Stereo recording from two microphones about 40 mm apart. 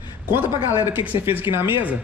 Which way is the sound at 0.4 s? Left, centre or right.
Right.